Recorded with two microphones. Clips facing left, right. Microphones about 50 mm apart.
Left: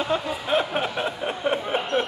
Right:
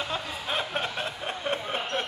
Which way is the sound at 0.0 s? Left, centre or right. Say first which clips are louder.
Left 7 dB; centre.